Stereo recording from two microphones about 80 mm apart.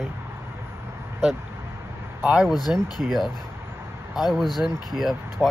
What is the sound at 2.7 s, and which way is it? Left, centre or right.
Speech, right.